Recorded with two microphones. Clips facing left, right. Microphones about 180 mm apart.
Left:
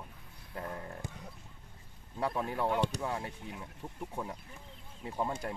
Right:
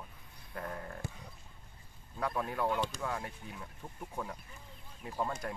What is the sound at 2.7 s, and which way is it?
Speech, 65° left (ahead or behind).